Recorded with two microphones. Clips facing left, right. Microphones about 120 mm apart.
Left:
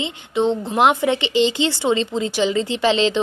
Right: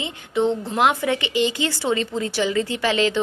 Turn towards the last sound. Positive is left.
turn(degrees=25)  # may be behind; listen again after turning